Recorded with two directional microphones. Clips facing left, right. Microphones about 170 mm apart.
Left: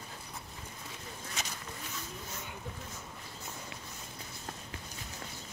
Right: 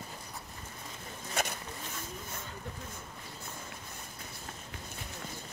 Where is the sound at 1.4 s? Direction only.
55° right (ahead or behind).